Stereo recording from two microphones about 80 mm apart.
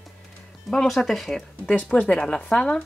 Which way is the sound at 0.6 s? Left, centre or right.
Centre.